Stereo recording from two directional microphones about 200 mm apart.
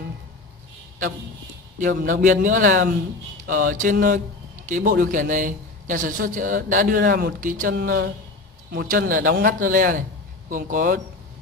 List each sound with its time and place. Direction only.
1.8 s a man's voice: 45° right (ahead or behind)